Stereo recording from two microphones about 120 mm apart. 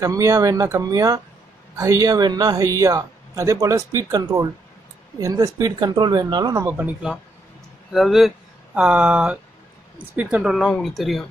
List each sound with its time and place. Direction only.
0.0 s a man's voice: 25° right (ahead or behind)
6.9 s speech: 5° right (ahead or behind)